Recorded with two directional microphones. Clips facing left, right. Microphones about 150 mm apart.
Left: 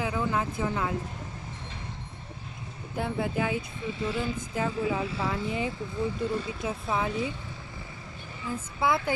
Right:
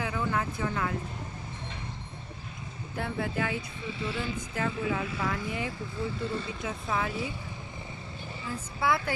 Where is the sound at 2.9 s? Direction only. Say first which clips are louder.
Left 3 dB; 20° left (ahead or behind).